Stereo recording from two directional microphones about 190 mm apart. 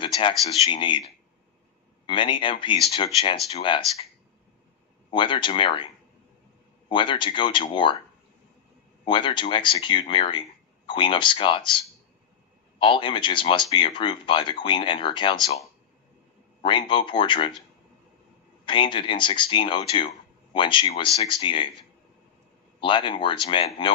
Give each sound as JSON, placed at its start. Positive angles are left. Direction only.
{"t": 0.0, "sound": "speech", "side_deg": 25}
{"t": 2.0, "sound": "speech", "side_deg": 25}
{"t": 5.1, "sound": "speech", "side_deg": 25}
{"t": 6.9, "sound": "speech", "side_deg": 25}
{"t": 9.0, "sound": "speech", "side_deg": 25}
{"t": 12.7, "sound": "speech", "side_deg": 25}
{"t": 16.6, "sound": "speech", "side_deg": 25}
{"t": 18.7, "sound": "speech", "side_deg": 25}
{"t": 22.8, "sound": "speech", "side_deg": 25}